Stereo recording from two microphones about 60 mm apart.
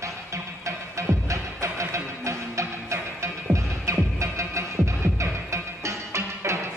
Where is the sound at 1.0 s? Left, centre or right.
Right.